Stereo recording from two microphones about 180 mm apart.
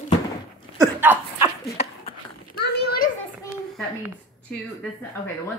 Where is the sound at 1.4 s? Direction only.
30° left (ahead or behind).